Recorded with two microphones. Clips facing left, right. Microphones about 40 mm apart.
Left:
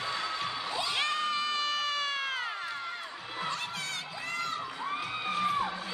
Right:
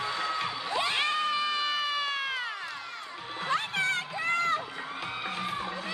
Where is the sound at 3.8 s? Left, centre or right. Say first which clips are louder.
Right 8 dB; right.